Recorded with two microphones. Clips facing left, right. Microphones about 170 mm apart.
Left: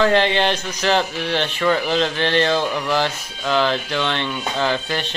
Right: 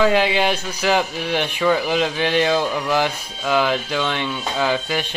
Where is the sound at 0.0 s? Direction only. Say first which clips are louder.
Even; 10° right (ahead or behind).